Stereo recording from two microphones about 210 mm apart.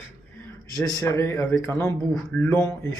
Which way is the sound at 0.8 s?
15° left (ahead or behind).